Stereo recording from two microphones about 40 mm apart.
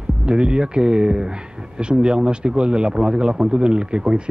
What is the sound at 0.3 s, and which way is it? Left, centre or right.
Speech, right.